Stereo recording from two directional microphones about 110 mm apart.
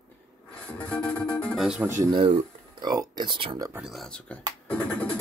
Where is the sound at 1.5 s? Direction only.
5° right (ahead or behind).